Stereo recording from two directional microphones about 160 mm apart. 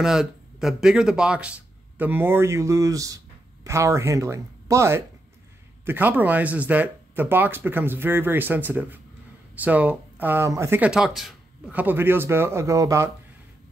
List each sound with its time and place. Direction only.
0.0 s speech: 5° right (ahead or behind); by 13.1 s 20° right (ahead or behind)